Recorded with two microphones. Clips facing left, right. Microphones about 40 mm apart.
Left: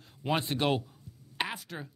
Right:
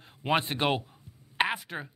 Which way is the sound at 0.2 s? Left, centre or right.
Right.